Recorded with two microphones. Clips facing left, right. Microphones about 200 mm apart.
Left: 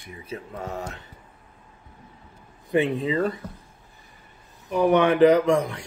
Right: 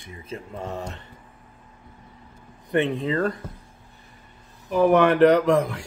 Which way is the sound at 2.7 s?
5° left (ahead or behind).